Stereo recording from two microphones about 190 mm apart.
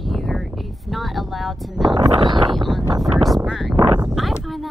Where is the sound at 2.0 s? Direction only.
25° right (ahead or behind).